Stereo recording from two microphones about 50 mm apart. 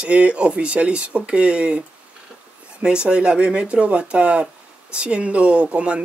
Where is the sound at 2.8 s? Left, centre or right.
Centre.